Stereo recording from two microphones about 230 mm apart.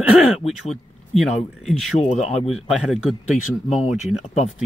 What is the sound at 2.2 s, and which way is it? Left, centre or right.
Speech, left.